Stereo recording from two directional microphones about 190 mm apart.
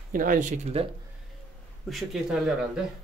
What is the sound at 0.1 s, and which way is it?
Speech, 45° right (ahead or behind).